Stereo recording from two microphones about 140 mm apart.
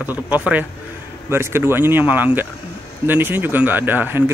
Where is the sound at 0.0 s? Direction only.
10° right (ahead or behind).